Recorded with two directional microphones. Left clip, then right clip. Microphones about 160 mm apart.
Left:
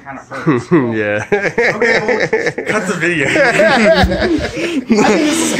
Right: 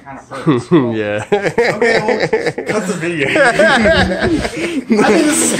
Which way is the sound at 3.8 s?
50° left (ahead or behind).